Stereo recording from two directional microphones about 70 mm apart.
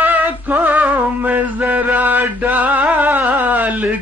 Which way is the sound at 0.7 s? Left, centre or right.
Right.